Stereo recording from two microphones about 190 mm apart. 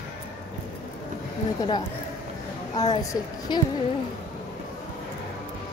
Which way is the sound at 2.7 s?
20° left (ahead or behind).